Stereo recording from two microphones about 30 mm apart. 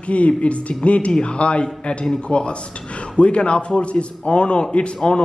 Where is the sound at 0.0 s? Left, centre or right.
Left.